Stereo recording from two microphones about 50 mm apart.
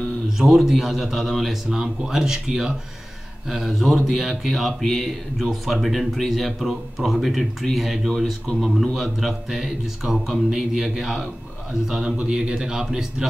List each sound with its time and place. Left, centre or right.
0.4 s a man's voice: centre